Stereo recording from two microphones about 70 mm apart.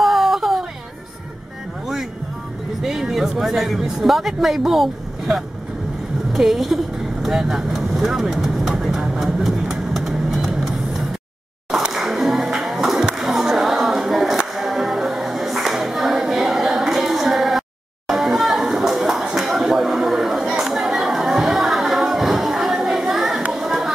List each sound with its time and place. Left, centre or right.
0.0 s a sound: centre
2.8 s a woman's voice: centre
7.2 s vehicle: centre
11.7 s music: centre
23.5 s chatter: centre